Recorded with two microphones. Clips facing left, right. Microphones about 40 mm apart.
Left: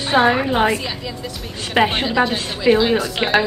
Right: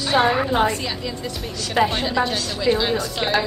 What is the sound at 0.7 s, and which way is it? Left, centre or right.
Speech, centre.